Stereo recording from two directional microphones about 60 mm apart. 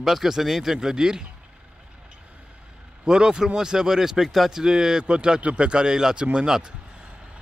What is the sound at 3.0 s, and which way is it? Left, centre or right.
Speech, centre.